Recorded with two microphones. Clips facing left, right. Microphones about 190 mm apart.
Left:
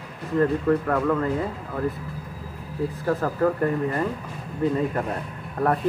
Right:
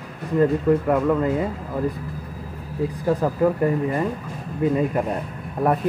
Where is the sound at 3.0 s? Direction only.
15° right (ahead or behind).